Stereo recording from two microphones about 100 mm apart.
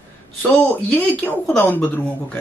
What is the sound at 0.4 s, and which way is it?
Speech, 15° left (ahead or behind).